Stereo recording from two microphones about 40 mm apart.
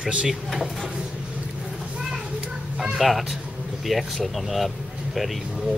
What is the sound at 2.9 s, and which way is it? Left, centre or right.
Speech, centre.